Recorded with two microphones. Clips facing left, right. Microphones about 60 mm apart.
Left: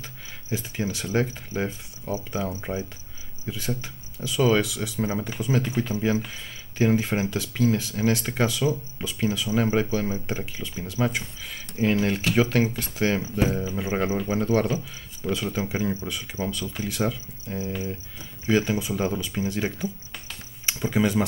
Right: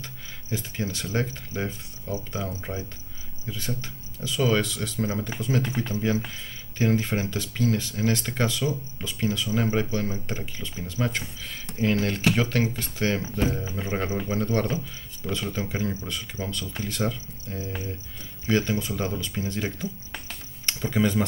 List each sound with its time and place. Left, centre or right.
0.0 s speech: centre